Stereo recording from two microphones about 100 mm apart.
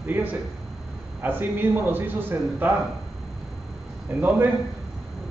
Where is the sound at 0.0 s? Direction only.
20° right (ahead or behind).